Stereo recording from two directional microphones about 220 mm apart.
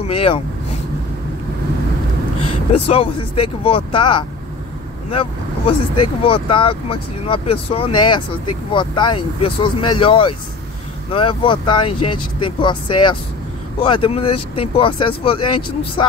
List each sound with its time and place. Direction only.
0.0 s speech: 25° left (ahead or behind)
2.7 s speech: 25° left (ahead or behind)